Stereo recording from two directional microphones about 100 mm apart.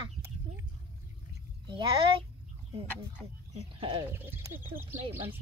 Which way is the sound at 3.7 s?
70° right (ahead or behind).